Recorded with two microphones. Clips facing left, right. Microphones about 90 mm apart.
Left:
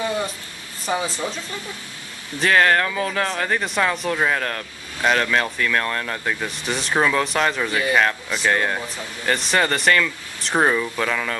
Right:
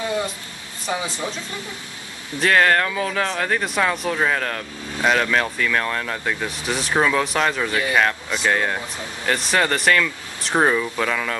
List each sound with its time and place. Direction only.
0.8 s speech: centre (ahead or behind)
2.4 s speech: centre (ahead or behind)